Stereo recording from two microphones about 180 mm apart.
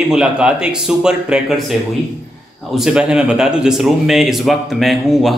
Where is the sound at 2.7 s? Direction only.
5° right (ahead or behind).